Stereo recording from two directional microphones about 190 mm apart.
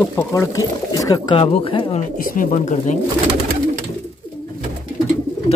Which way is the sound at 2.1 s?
45° left (ahead or behind).